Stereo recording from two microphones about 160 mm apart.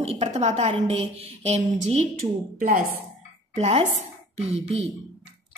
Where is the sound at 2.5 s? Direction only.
60° right (ahead or behind).